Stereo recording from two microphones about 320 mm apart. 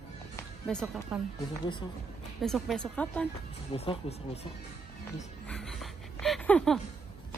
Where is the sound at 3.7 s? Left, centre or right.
Centre.